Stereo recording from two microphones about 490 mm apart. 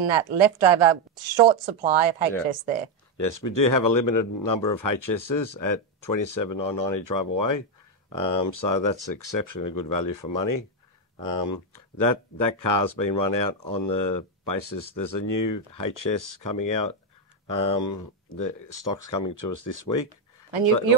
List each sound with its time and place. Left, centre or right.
0.1 s speech: right
3.2 s speech: left